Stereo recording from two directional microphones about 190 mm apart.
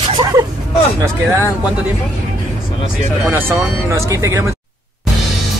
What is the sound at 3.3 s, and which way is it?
Speech, 10° right (ahead or behind).